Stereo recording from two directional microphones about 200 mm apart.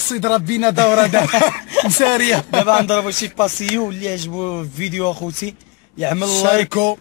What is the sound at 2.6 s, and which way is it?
Speech, 5° right (ahead or behind).